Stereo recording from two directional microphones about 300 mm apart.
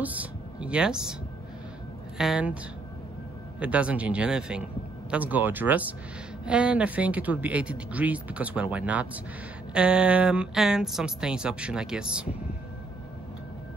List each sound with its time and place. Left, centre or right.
0.0 s speech: centre
2.1 s speech: centre